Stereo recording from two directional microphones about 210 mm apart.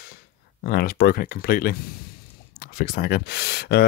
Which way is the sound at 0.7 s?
45° left (ahead or behind).